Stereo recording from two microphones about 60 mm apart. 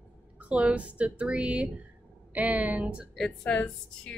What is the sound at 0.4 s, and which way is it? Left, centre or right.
Speech, right.